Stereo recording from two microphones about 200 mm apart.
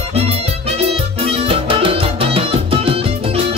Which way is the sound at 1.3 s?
30° right (ahead or behind).